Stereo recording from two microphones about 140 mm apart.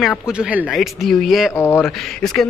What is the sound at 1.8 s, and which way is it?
Speech, centre (ahead or behind).